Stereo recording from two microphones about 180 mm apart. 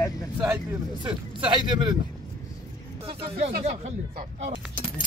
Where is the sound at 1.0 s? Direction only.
25° right (ahead or behind).